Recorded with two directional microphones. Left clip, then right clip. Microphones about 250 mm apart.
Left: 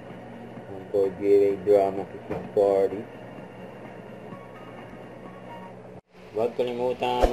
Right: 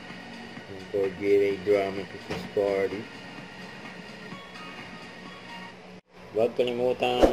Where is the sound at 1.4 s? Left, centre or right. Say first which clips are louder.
Left 4 dB; right.